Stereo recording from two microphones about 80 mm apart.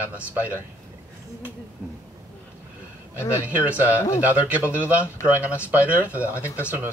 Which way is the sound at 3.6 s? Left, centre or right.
Right.